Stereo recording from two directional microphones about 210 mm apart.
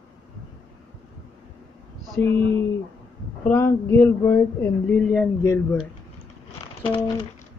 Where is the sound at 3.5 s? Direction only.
10° left (ahead or behind).